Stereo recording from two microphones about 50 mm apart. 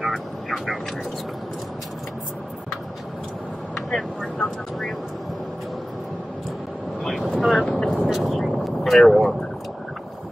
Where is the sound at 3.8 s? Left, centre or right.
Centre.